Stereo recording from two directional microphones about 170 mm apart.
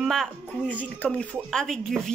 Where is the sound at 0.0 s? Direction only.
Centre (ahead or behind).